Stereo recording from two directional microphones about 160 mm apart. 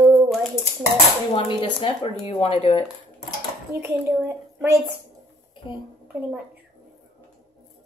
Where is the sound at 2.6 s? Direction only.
40° left (ahead or behind).